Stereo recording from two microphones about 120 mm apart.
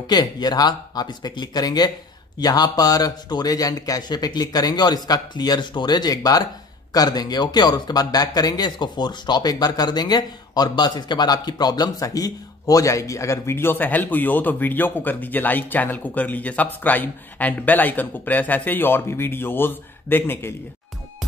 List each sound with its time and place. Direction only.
0.0 s speech: 35° left (ahead or behind); by 20.5 s 20° left (ahead or behind)